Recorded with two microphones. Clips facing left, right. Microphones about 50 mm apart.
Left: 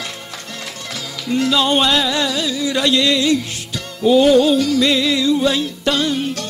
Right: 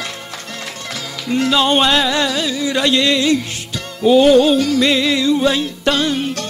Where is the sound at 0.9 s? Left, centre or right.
Right.